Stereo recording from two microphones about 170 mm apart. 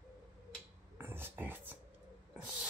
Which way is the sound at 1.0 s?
15° right (ahead or behind).